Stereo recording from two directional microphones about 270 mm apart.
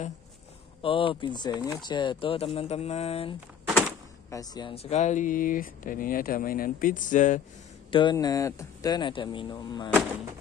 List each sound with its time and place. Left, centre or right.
0.8 s speech: centre
3.7 s speech: centre; by 7.4 s left
7.9 s speech: centre